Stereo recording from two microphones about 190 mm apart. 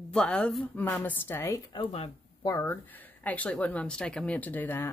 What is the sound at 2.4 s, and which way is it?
Speech, 15° left (ahead or behind).